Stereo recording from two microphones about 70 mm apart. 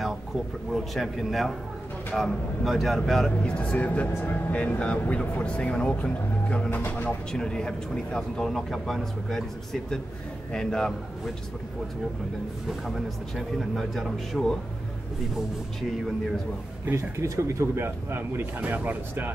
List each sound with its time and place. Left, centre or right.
0.7 s speech: centre
3.3 s speech: centre
6.7 s speech: left
7.3 s speech: centre
12.6 s speech: centre
16.9 s speech: right
18.6 s speech: right